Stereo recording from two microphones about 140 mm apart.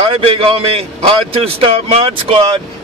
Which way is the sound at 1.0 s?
40° right (ahead or behind).